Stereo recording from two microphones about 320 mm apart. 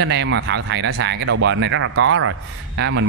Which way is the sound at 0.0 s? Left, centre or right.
Right.